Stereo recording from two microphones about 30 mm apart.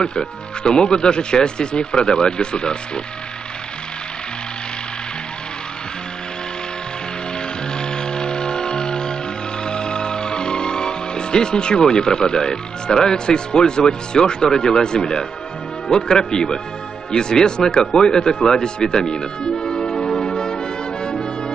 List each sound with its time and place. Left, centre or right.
0.0 s speech: left
7.7 s music: left
9.7 s speech: left
19.6 s brass instrument: left